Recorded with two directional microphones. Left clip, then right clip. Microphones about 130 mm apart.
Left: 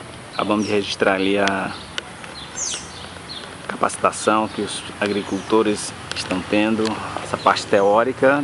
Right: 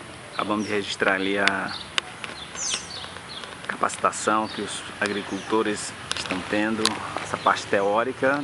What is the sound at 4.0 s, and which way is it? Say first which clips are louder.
Speech: left 5 dB; 10° right (ahead or behind).